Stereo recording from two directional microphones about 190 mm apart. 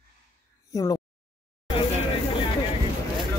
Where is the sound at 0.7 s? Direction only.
20° left (ahead or behind).